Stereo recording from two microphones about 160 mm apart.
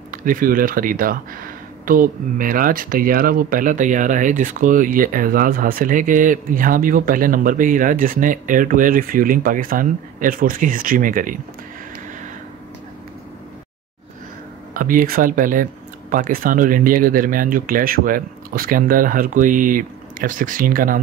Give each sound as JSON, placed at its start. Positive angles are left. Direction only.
{"t": 0.1, "sound": "speech", "side_deg": -60}
{"t": 14.7, "sound": "speech", "side_deg": -60}